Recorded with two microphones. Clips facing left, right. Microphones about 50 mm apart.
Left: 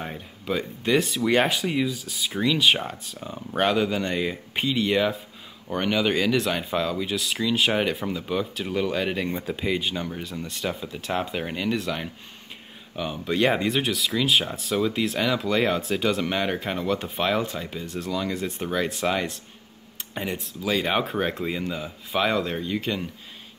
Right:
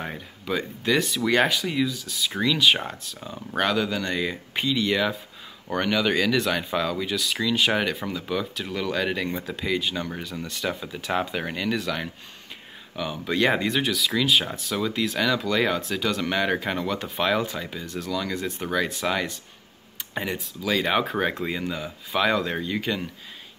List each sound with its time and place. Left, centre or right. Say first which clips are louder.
0.5 s speech: left 1 dB; centre; by 2.3 s left
2.4 s speech: even; centre
3.5 s speech: left 2 dB; centre
10.1 s speech: even; centre